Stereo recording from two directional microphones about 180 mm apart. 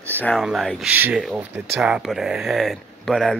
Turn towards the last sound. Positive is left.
turn(degrees=0)  # may be behind; listen again after turning